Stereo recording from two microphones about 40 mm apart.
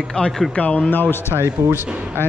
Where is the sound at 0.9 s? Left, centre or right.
Left.